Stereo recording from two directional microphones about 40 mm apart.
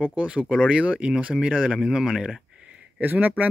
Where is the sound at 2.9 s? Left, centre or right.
Right.